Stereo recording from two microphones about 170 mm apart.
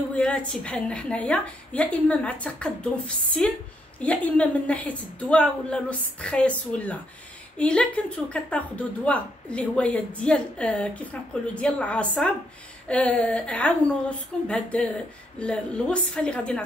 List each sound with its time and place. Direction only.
0.1 s a woman's voice: 5° left (ahead or behind)